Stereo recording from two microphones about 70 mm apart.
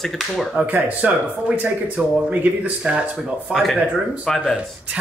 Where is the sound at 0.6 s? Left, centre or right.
Right.